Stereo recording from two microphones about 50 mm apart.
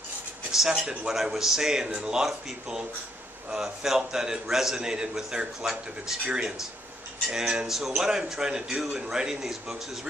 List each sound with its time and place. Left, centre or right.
0.5 s a man's voice: centre